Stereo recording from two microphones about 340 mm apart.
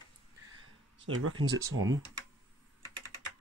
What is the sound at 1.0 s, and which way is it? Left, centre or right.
Speech, right.